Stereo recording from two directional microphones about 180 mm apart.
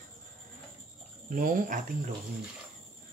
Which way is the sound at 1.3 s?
50° right (ahead or behind).